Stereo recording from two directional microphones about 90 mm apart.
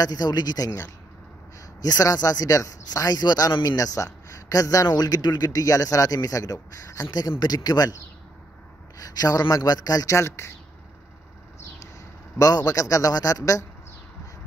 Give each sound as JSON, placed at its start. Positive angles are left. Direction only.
{"t": 0.0, "sound": "a man's voice", "side_deg": 45}
{"t": 1.8, "sound": "a man's voice", "side_deg": 45}
{"t": 12.4, "sound": "speech", "side_deg": 45}